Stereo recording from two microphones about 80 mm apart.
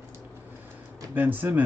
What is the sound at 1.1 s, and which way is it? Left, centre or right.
Speech, right.